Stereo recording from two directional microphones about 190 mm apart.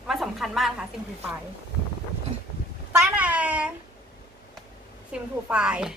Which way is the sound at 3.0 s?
10° right (ahead or behind).